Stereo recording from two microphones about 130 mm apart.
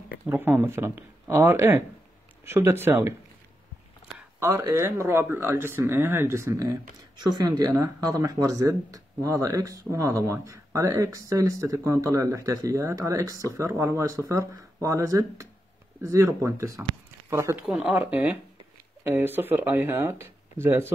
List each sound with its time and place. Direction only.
0.3 s speech: 15° right (ahead or behind)
4.4 s speech: 25° right (ahead or behind)
17.6 s speech: 5° right (ahead or behind)